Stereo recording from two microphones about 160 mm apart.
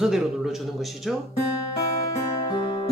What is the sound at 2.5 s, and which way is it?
Music, 30° left (ahead or behind).